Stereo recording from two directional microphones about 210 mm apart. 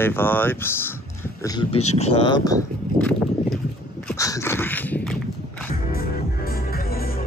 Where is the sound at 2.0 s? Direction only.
30° left (ahead or behind).